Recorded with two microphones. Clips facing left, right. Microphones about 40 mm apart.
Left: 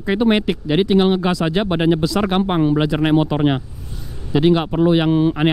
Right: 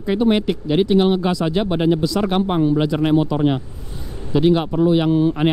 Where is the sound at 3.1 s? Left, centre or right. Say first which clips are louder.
Left 1 dB; left.